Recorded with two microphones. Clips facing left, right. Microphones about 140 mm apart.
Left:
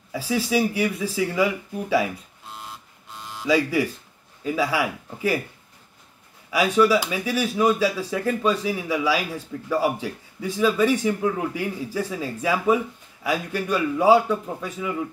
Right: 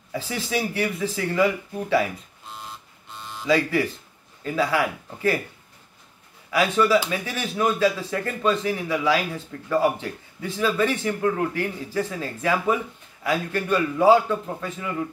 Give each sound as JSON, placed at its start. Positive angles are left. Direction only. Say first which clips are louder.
{"t": 0.1, "sound": "speech", "louder": "left 4 dB", "side_deg": 10}
{"t": 2.5, "sound": "electric shaver", "louder": "even", "side_deg": 5}
{"t": 4.4, "sound": "speech", "louder": "even", "side_deg": 10}
{"t": 6.5, "sound": "speech", "louder": "left 1 dB", "side_deg": 10}